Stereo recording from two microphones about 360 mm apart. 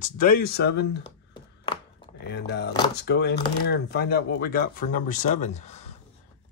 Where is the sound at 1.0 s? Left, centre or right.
Centre.